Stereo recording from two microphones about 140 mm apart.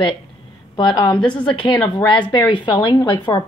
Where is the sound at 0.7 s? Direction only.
35° left (ahead or behind).